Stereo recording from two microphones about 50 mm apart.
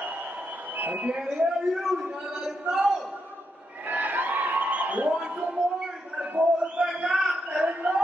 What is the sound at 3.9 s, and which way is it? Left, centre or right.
Crowd, right.